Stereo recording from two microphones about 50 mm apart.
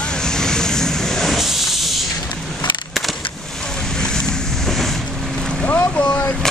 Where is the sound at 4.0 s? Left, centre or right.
Centre.